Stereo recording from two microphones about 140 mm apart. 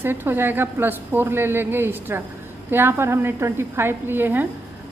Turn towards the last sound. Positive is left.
turn(degrees=-15)  # may be behind; listen again after turning